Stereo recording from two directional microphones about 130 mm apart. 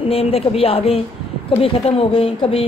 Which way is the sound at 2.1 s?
45° left (ahead or behind).